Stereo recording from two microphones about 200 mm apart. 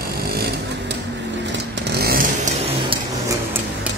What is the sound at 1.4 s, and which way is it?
Chainsaw, 55° right (ahead or behind).